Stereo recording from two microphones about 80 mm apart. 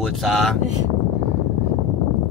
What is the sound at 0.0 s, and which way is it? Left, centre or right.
Speech, centre.